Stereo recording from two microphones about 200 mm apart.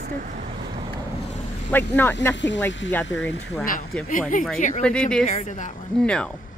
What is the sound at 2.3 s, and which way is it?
Speech, 65° left (ahead or behind).